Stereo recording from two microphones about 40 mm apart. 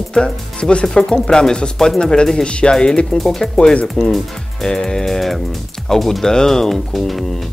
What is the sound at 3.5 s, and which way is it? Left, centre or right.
Speech, left.